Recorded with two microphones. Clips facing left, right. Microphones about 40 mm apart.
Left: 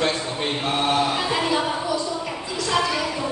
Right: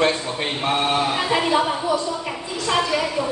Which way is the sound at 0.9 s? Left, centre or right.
Centre.